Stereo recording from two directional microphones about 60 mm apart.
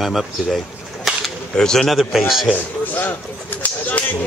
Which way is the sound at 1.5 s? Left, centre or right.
Centre.